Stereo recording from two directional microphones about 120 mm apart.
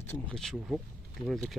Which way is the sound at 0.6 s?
10° right (ahead or behind).